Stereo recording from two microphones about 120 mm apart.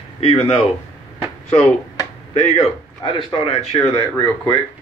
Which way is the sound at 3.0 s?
40° left (ahead or behind).